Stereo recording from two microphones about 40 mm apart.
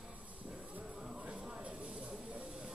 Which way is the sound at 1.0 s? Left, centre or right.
Centre.